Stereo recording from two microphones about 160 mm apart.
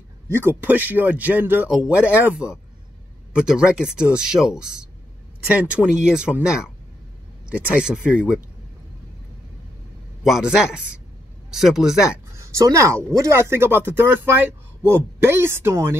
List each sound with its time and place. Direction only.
0.3 s speech: 15° right (ahead or behind)
10.2 s speech: 5° right (ahead or behind)
12.4 s speech: 20° right (ahead or behind)